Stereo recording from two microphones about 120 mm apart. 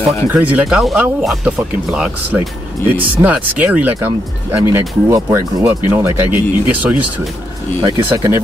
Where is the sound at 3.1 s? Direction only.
15° right (ahead or behind).